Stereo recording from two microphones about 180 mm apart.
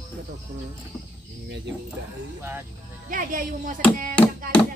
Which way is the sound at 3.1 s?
50° right (ahead or behind).